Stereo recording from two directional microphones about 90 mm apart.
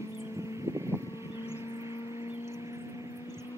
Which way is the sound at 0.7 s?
30° right (ahead or behind).